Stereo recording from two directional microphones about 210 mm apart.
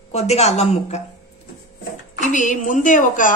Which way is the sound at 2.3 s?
35° left (ahead or behind).